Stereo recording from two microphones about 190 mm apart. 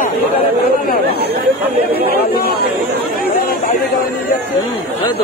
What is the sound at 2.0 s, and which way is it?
Chatter, 55° left (ahead or behind).